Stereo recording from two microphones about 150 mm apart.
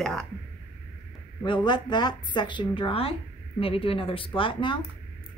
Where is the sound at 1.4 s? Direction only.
30° left (ahead or behind).